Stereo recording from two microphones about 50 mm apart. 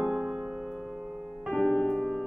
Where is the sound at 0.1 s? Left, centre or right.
Centre.